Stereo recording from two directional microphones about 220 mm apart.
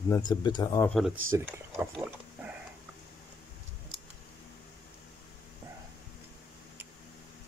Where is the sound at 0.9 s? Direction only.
Centre (ahead or behind).